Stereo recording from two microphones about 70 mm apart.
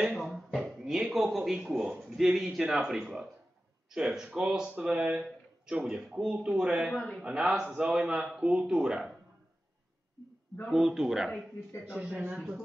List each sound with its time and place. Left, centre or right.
0.1 s a man's voice: centre
6.9 s a man's voice: centre
7.2 s a man's voice: centre
10.7 s a man's voice: centre